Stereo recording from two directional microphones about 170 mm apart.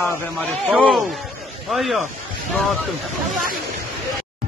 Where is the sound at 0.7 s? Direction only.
10° right (ahead or behind).